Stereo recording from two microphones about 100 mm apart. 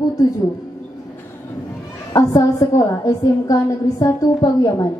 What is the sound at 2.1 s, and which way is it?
A woman's voice, 35° left (ahead or behind).